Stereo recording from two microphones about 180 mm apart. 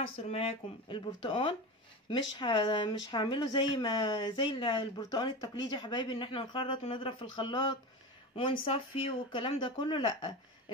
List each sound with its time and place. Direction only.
0.0 s speech: 30° left (ahead or behind)